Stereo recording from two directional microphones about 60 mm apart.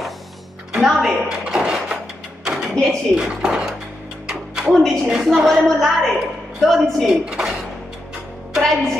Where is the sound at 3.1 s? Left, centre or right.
Centre.